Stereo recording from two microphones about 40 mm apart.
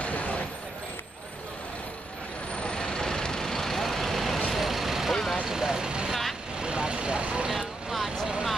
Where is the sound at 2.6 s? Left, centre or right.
Left; by 7.5 s right.